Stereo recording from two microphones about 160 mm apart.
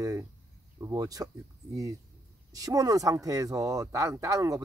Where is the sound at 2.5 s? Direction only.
20° right (ahead or behind).